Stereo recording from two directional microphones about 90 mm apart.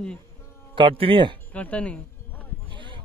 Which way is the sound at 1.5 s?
15° left (ahead or behind).